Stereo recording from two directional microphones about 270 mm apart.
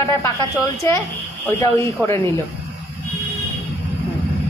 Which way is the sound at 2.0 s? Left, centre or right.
Centre.